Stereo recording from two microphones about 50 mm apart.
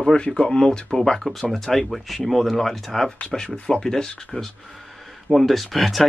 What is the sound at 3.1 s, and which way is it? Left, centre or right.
Speech, centre.